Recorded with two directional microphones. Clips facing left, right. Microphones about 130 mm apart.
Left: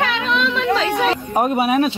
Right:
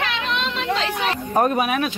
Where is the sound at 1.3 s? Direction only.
15° left (ahead or behind).